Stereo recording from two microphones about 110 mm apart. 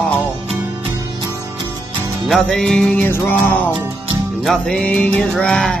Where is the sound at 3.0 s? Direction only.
20° left (ahead or behind).